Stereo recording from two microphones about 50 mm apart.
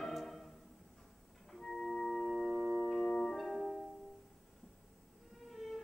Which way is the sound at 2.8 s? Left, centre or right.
Centre.